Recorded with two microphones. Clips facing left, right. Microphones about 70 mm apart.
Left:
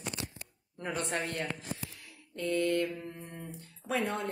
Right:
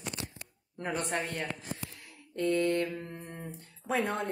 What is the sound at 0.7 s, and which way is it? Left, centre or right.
Speech, right.